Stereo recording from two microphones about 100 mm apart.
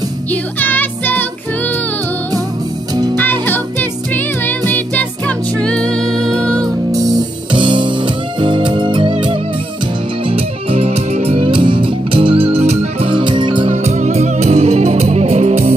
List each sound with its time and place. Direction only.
0.3 s music: 20° left (ahead or behind)
3.2 s music: 20° left (ahead or behind)
6.9 s music: 40° right (ahead or behind)
7.5 s music: 55° right (ahead or behind)
10.2 s music: 75° right (ahead or behind); by 13.7 s 55° right (ahead or behind)
13.7 s music: 90° right